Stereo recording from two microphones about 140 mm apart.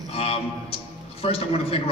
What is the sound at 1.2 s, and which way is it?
Speech, 40° left (ahead or behind).